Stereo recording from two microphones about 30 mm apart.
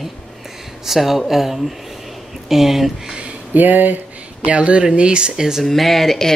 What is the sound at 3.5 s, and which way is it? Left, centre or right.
Speech, right.